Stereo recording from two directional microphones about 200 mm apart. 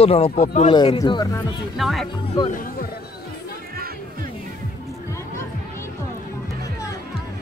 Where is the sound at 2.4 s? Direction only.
40° left (ahead or behind).